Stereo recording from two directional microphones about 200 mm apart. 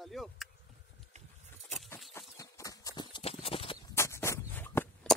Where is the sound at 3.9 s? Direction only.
15° left (ahead or behind).